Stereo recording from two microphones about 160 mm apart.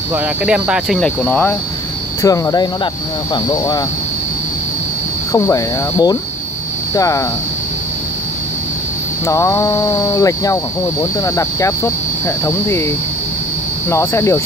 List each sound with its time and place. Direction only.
0.1 s speech: 5° right (ahead or behind); by 3.8 s 25° left (ahead or behind)
5.3 s speech: 20° left (ahead or behind)
9.2 s speech: 20° left (ahead or behind)
13.8 s cricket: 15° left (ahead or behind)